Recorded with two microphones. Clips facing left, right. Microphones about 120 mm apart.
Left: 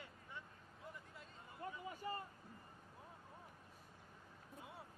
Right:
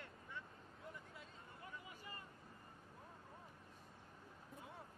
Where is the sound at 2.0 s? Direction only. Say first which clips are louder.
Left 14 dB; 35° left (ahead or behind).